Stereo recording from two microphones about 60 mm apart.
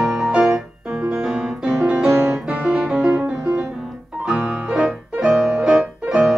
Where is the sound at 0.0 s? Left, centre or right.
Centre.